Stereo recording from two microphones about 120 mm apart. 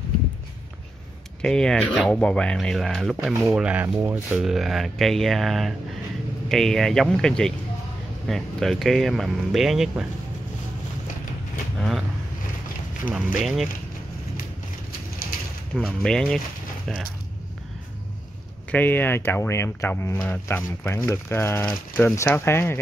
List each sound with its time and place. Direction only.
1.4 s speech: 5° left (ahead or behind); by 4.4 s 10° right (ahead or behind)
4.4 s speech: centre (ahead or behind)
13.4 s speech: centre (ahead or behind)
15.7 s speech: 5° left (ahead or behind)
18.7 s speech: 15° left (ahead or behind)